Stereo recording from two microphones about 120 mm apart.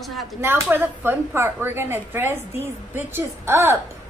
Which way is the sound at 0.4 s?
15° right (ahead or behind).